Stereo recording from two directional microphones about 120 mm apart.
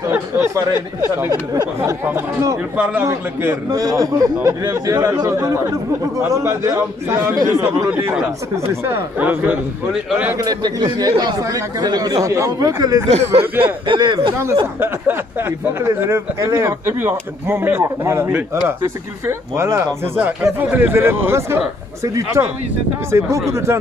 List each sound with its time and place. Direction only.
0.1 s speech: 20° right (ahead or behind)
1.8 s speech: 20° right (ahead or behind)
8.8 s speech: 15° right (ahead or behind)
10.4 s speech: 35° right (ahead or behind)
13.1 s speech: 60° right (ahead or behind)
13.8 s speech: 40° right (ahead or behind)
15.8 s speech: 20° right (ahead or behind)